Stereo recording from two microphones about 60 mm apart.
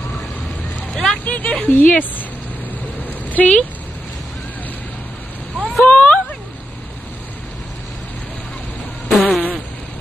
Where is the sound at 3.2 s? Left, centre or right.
Left.